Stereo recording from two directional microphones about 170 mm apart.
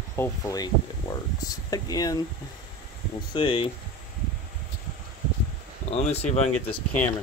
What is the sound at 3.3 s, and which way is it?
Speech, 30° left (ahead or behind).